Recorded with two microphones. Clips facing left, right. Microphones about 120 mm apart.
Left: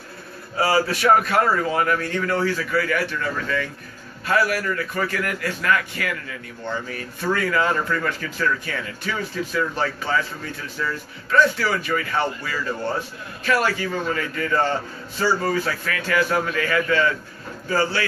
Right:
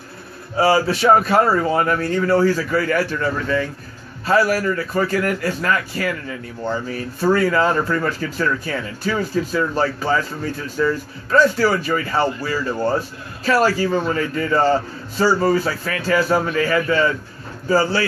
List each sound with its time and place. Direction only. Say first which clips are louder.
0.6 s a man's voice: right 4 dB; 25° right (ahead or behind)